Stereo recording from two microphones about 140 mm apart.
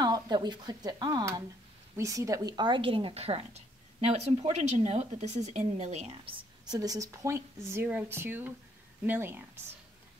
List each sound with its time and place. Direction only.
0.0 s a woman's voice: 30° right (ahead or behind); by 6.3 s 50° right (ahead or behind)
6.6 s a woman's voice: 30° right (ahead or behind)